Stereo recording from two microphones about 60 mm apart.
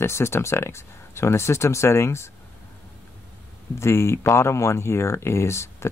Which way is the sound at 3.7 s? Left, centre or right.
Left.